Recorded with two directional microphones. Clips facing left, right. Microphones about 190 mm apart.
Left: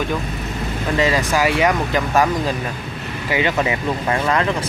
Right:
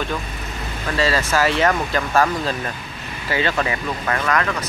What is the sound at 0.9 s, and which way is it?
Speech, 15° left (ahead or behind).